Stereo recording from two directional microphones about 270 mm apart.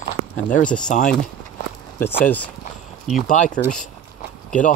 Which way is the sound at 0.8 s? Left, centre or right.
Left.